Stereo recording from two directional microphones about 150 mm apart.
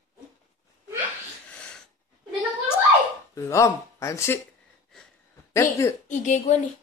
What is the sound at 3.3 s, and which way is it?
Speech, 20° left (ahead or behind).